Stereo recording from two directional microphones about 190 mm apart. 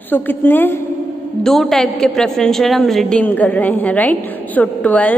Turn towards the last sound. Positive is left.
turn(degrees=10)  # may be behind; listen again after turning